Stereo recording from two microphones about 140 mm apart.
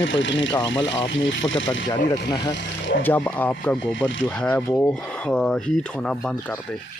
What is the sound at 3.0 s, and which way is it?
Speech, 10° left (ahead or behind).